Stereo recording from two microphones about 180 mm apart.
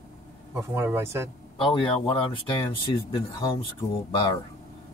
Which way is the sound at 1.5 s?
30° left (ahead or behind).